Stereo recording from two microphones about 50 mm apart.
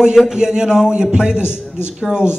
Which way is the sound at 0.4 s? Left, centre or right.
Centre.